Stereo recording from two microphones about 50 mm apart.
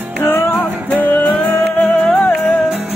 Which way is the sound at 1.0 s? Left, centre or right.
Left.